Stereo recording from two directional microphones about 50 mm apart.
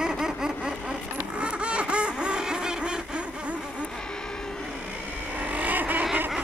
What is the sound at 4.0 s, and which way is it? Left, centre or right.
Vehicle, centre.